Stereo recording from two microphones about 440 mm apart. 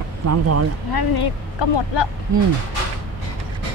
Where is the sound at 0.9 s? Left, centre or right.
Left.